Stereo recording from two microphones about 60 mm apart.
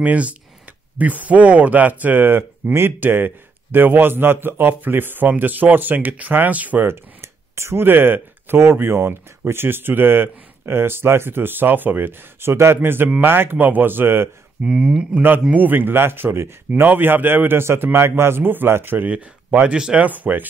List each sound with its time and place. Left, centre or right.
0.0 s speech: right
6.8 s speech: right
7.8 s speech: right
14.7 s speech: centre
15.5 s speech: right
19.7 s speech: centre
20.1 s speech: right